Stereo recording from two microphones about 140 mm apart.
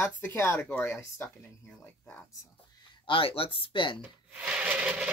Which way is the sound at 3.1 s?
40° left (ahead or behind).